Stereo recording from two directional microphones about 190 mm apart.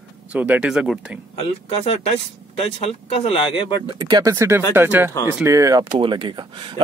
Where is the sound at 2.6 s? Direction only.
35° left (ahead or behind).